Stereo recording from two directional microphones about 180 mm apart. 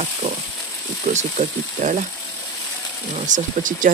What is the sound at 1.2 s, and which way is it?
Speech, 40° right (ahead or behind).